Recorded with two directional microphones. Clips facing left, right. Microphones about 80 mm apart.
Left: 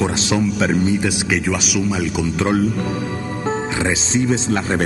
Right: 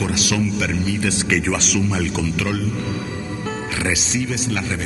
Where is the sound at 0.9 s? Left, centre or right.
Centre.